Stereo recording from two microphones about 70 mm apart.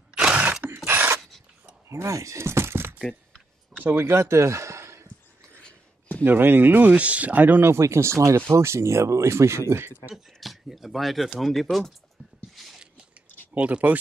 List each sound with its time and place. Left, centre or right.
0.1 s mechanisms: centre
0.8 s a sound: right
1.9 s speech: right
4.0 s speech: right
5.6 s a sound: centre
6.2 s speech: right
7.7 s speech: right
10.1 s speech: centre
12.5 s biting: centre
13.6 s speech: centre